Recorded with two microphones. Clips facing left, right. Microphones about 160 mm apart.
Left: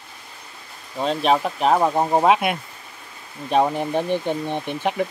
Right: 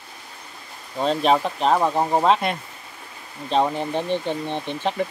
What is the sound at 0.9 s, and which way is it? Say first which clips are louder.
Speech: even; centre (ahead or behind).